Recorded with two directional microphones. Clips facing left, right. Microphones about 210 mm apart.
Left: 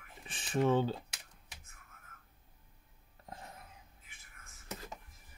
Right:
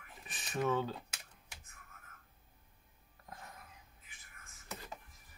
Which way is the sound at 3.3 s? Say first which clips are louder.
Left 3 dB; 25° left (ahead or behind).